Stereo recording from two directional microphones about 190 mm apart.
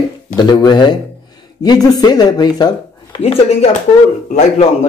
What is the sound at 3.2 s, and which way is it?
A man's voice, 30° left (ahead or behind).